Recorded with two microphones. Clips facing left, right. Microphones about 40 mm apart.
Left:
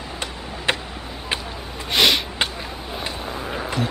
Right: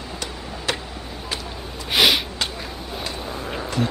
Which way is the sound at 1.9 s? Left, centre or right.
Centre.